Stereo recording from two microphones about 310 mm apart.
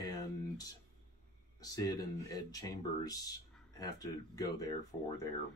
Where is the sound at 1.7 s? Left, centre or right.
Centre.